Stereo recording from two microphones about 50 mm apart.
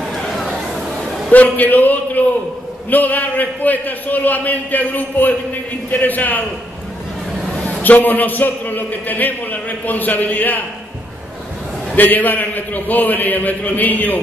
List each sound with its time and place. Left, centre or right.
0.4 s chatter: centre
1.3 s a man's voice: left
7.8 s a man's voice: left
11.9 s a man's voice: left